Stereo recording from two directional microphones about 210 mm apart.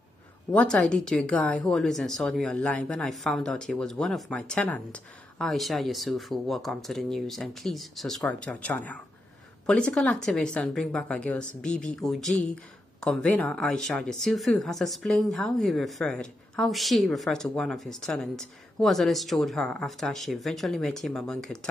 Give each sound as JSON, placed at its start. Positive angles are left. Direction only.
{"t": 0.5, "sound": "speech", "side_deg": 5}